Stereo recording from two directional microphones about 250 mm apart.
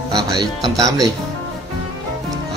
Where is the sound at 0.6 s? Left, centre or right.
Centre.